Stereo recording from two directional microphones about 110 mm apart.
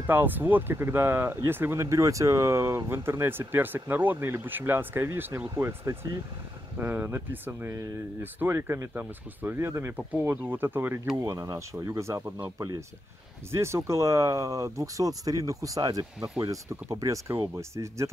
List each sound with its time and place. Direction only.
0.0 s speech: 20° right (ahead or behind)
11.2 s speech: 30° right (ahead or behind)